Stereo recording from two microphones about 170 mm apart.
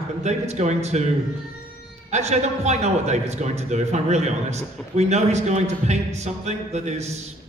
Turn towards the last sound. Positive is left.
turn(degrees=-40)  # may be behind; listen again after turning